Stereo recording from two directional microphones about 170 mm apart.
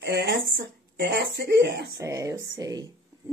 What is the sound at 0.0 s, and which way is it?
Speech, 90° right.